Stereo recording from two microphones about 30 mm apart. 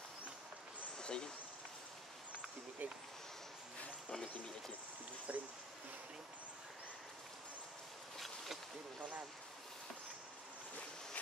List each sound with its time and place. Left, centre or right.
0.9 s a sound: left
2.8 s speech: right
4.1 s speech: left
5.3 s speech: right